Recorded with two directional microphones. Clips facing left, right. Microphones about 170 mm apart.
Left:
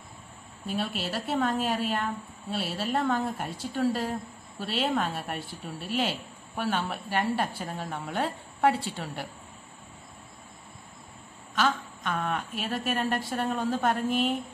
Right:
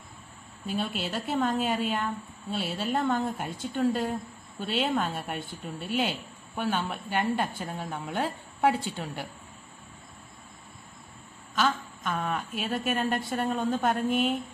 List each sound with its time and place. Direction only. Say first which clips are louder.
0.7 s a woman's voice: even; centre (ahead or behind)
11.5 s a woman's voice: even; centre (ahead or behind)